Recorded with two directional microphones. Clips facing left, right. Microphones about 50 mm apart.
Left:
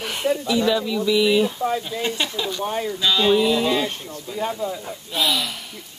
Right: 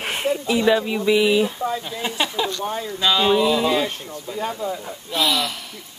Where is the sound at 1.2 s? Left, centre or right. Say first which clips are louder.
Even; centre.